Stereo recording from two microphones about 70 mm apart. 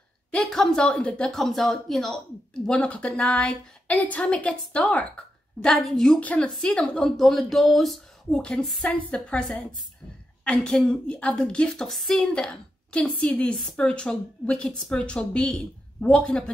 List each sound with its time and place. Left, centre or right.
0.3 s a woman's voice: centre
1.3 s a woman's voice: centre
2.5 s a woman's voice: centre
5.7 s a woman's voice: centre
6.1 s a woman's voice: centre